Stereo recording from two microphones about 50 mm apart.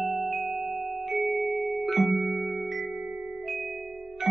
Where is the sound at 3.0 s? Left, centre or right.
Centre.